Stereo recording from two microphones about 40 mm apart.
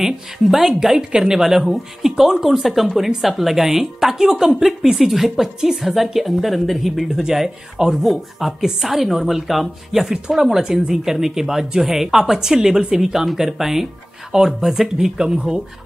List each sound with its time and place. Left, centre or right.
0.0 s a woman's voice: centre
7.1 s a woman's voice: centre
10.0 s speech: centre